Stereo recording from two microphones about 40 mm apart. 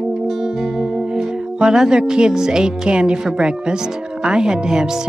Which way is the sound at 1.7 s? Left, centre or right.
Centre.